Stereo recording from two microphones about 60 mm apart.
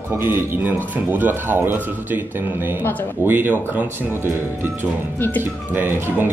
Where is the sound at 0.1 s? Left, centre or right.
Right.